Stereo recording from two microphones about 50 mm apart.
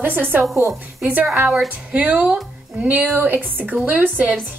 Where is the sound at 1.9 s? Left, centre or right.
Right.